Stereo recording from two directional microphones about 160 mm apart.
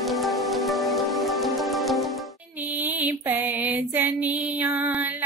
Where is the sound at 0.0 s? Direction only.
Centre (ahead or behind).